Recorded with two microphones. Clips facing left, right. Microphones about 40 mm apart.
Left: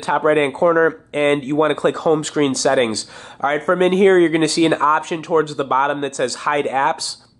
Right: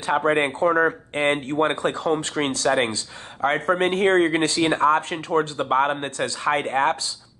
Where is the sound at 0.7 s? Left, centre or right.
Left.